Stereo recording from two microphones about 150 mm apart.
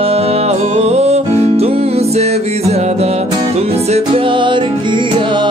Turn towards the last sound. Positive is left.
turn(degrees=-30)  # may be behind; listen again after turning